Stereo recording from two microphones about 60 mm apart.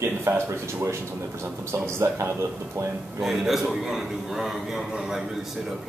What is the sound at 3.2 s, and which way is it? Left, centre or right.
A man's voice, centre.